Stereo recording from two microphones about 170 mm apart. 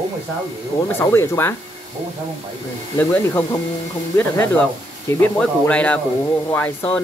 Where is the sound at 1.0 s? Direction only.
15° left (ahead or behind).